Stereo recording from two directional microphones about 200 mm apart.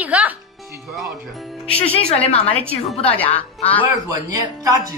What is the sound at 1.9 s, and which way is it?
Speech, 30° left (ahead or behind).